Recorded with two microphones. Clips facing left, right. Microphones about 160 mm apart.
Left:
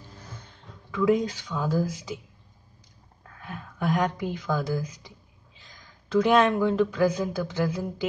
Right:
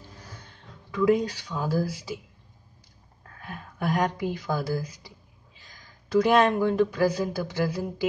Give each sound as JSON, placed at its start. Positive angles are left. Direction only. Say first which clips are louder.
{"t": 1.1, "sound": "speech", "louder": "even", "side_deg": -10}
{"t": 3.8, "sound": "speech", "louder": "even", "side_deg": -10}
{"t": 6.2, "sound": "speech", "louder": "left 1 dB", "side_deg": -10}